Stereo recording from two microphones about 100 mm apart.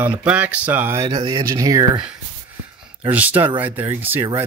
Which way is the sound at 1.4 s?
35° right (ahead or behind).